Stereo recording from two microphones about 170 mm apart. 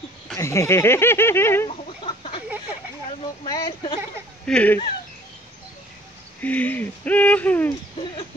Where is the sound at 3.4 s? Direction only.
25° left (ahead or behind).